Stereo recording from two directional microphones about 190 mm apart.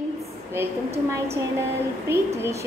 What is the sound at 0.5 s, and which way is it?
A woman's voice, 15° right (ahead or behind).